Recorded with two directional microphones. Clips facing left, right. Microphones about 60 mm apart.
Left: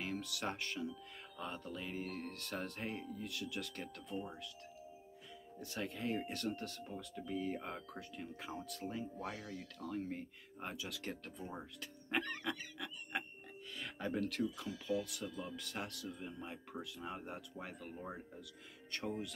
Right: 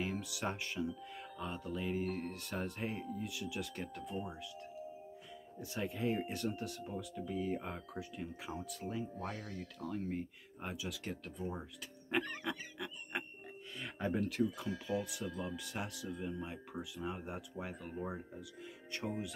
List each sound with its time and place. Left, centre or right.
0.0 s speech: centre
5.6 s speech: centre
9.2 s speech: right
10.0 s speech: centre
12.2 s speech: centre
14.4 s speech: right
15.4 s speech: centre